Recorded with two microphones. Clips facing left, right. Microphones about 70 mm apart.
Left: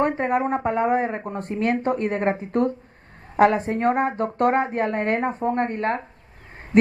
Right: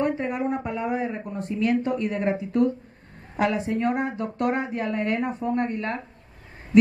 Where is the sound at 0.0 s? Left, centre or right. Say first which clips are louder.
Left 4 dB; left.